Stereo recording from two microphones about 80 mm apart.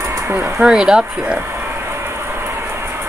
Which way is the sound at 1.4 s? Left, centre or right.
Right.